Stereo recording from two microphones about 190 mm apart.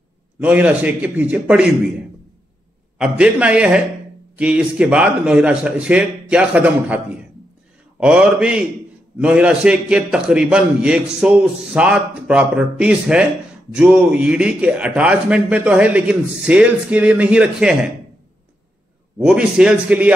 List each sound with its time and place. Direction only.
0.4 s a man's voice: 10° right (ahead or behind)
3.0 s a man's voice: 5° right (ahead or behind)
19.1 s a man's voice: 5° right (ahead or behind)